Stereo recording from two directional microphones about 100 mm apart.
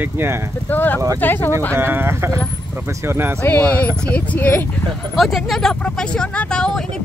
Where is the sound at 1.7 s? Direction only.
20° right (ahead or behind).